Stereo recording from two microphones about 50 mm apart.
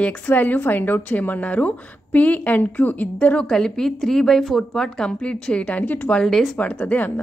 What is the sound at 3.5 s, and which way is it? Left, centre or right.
Speech, centre.